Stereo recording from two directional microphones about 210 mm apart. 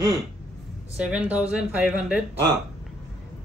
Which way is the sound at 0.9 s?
5° right (ahead or behind).